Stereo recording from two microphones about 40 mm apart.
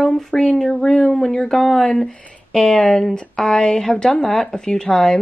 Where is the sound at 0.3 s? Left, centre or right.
Centre.